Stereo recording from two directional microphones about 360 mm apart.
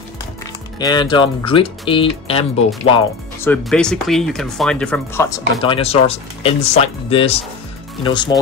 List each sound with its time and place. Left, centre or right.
0.7 s speech: centre